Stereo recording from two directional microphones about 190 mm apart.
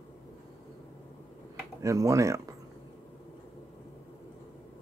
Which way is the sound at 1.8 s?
15° right (ahead or behind).